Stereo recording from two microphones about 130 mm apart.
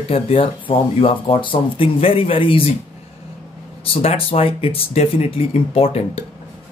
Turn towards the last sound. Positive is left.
turn(degrees=45)  # may be behind; listen again after turning